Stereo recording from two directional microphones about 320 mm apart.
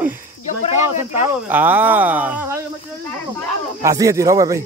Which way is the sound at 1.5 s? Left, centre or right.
Centre.